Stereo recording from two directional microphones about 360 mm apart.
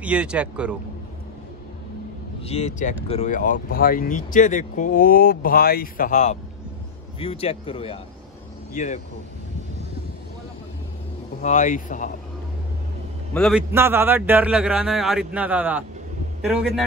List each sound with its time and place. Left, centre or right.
0.0 s a man's voice: centre
2.4 s speech: centre
11.4 s speech: left
13.3 s a man's voice: centre